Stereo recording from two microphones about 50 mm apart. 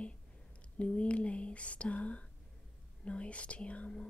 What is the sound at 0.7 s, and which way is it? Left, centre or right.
Speech, left.